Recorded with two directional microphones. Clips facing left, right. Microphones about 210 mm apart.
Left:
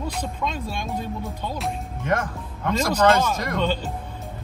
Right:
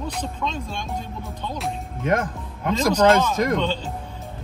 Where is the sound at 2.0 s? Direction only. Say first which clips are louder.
Right 3 dB; 20° right (ahead or behind).